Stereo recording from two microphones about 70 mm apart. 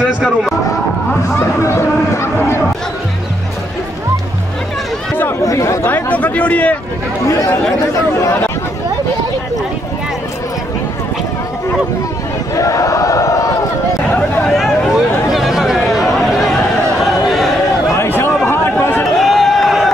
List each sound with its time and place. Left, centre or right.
1.3 s speech: left
5.4 s chatter: left
5.9 s speech: left
7.2 s speech: left
12.5 s speech: left
14.1 s a sound: left
14.6 s chatter: centre
17.9 s a sound: left
19.1 s a sound: centre